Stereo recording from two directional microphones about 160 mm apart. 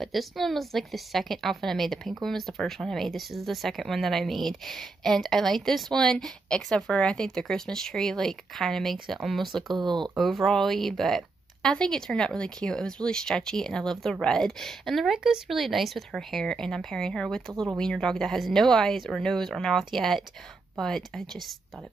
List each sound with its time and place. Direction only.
0.0 s speech: centre (ahead or behind)
9.8 s speech: 30° right (ahead or behind)
10.1 s speech: centre (ahead or behind)